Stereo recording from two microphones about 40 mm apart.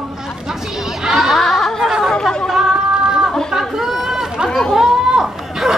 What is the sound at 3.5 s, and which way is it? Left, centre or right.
Chatter, centre.